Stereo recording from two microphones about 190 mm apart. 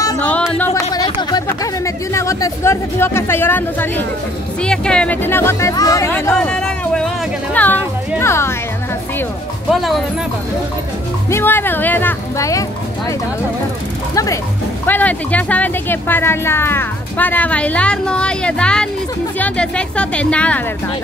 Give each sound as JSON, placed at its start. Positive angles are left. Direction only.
{"t": 0.4, "sound": "music", "side_deg": 5}
{"t": 0.9, "sound": "a sound", "side_deg": 20}
{"t": 2.1, "sound": "speech", "side_deg": 15}
{"t": 9.7, "sound": "speech", "side_deg": 0}
{"t": 11.2, "sound": "speech", "side_deg": 15}
{"t": 14.1, "sound": "speech", "side_deg": 15}